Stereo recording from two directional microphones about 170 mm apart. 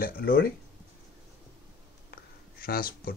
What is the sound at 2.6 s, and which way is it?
Speech, 60° left (ahead or behind).